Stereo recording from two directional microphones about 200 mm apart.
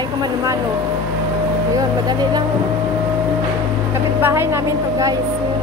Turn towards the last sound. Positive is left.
turn(degrees=-15)  # may be behind; listen again after turning